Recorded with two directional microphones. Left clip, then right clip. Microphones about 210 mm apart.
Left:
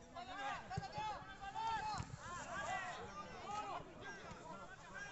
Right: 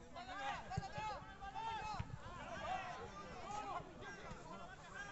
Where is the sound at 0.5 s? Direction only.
5° right (ahead or behind).